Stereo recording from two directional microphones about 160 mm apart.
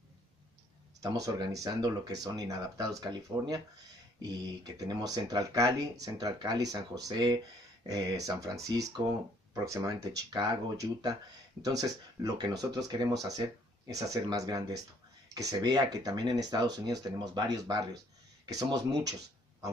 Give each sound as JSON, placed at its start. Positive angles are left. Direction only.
{"t": 1.0, "sound": "speech", "side_deg": -20}